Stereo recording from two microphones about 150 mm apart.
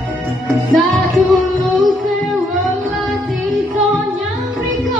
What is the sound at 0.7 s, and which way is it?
Music, centre (ahead or behind).